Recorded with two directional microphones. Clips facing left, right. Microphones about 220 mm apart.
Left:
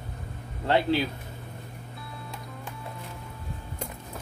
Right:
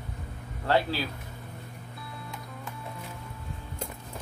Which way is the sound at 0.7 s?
20° left (ahead or behind).